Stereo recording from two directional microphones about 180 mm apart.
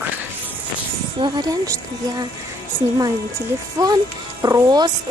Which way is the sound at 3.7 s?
20° right (ahead or behind).